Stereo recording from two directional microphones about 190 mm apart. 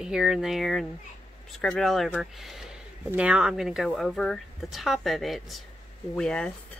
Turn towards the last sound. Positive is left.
turn(degrees=5)  # may be behind; listen again after turning